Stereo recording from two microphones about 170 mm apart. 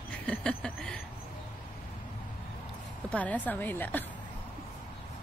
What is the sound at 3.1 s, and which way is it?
Speech, 10° left (ahead or behind).